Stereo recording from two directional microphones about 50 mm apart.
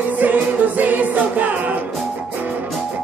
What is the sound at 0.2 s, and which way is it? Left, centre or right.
Music, right.